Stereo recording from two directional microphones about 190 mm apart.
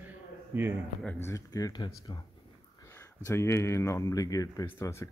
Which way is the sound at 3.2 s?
15° left (ahead or behind).